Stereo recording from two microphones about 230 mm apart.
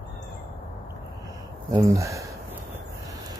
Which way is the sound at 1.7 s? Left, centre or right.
Centre.